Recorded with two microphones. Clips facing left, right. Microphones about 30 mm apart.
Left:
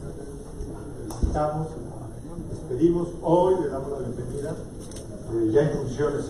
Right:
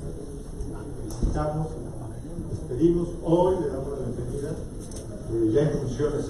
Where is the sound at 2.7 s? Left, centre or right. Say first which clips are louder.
Left 1 dB; centre.